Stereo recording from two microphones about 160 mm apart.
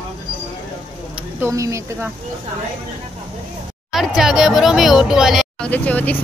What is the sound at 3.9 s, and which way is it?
Speech, centre (ahead or behind).